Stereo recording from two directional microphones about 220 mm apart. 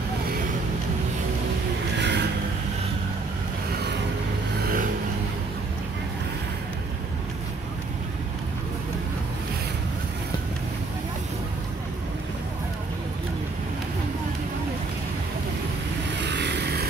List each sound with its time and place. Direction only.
2.0 s vehicle: 50° right (ahead or behind)
16.2 s vehicle: 50° right (ahead or behind)